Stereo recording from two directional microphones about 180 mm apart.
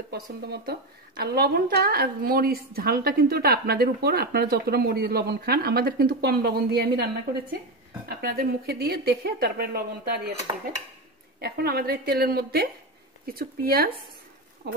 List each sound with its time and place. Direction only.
0.1 s a woman's voice: 60° right (ahead or behind)
8.2 s a woman's voice: 60° right (ahead or behind)
11.4 s a woman's voice: 60° right (ahead or behind)